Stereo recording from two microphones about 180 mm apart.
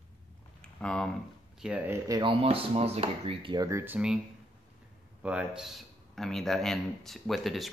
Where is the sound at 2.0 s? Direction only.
25° right (ahead or behind); by 4.2 s 5° right (ahead or behind).